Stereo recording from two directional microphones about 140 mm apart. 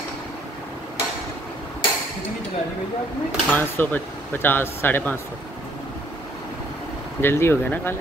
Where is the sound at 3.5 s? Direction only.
15° left (ahead or behind).